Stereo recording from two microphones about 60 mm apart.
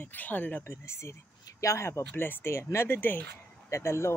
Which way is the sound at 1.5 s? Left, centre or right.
Left.